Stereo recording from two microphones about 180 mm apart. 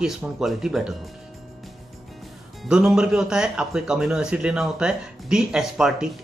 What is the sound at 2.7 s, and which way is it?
A man's voice, 5° right (ahead or behind).